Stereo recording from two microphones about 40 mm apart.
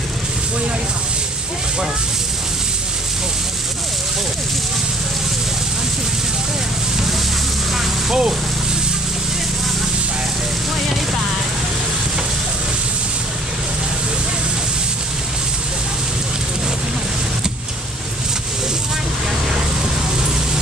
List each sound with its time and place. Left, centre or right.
8.1 s speech: centre